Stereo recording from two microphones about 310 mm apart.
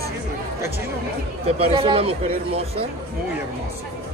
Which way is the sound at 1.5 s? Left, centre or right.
Centre.